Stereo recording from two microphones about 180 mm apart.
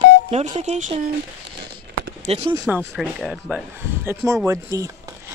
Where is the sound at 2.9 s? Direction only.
Centre (ahead or behind).